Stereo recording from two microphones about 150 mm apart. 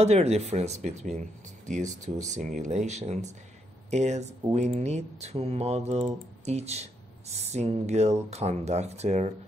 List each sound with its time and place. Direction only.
0.0 s speech: 45° right (ahead or behind)